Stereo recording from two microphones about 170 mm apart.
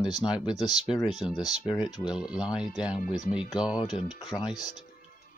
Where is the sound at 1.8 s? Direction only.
5° right (ahead or behind).